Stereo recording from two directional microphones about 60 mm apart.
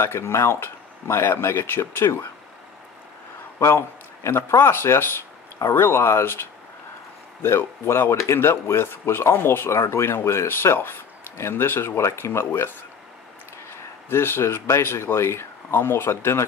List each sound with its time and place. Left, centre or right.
0.0 s speech: left
3.5 s speech: left
7.4 s speech: left
14.0 s speech: left